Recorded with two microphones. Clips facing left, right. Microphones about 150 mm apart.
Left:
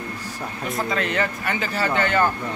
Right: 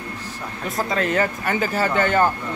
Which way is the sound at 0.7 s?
40° right (ahead or behind).